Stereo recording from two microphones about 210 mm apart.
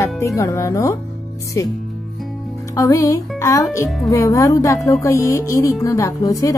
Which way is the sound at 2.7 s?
15° left (ahead or behind).